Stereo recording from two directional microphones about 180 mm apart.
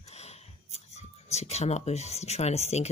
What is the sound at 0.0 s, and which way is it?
Speech, 35° left (ahead or behind).